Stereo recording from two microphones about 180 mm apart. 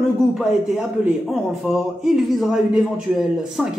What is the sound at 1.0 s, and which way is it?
A man's voice, centre (ahead or behind).